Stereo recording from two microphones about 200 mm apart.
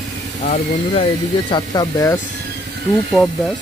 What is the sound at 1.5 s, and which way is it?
Speech, 20° left (ahead or behind).